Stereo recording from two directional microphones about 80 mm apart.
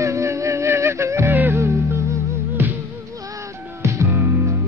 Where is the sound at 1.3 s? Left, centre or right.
Right.